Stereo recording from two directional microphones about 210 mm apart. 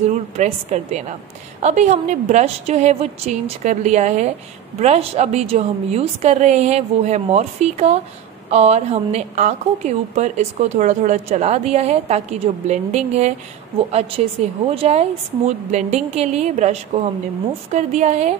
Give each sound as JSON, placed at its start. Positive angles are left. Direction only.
{"t": 0.1, "sound": "a woman's voice", "side_deg": -35}